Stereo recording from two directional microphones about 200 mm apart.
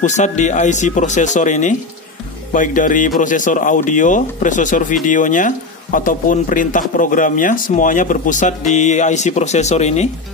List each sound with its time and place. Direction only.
0.0 s speech: 35° left (ahead or behind)